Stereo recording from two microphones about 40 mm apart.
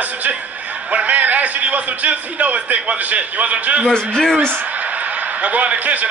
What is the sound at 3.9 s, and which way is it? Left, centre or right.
Speech, centre.